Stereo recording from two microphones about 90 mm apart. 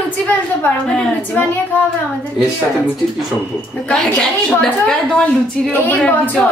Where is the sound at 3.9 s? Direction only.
10° left (ahead or behind).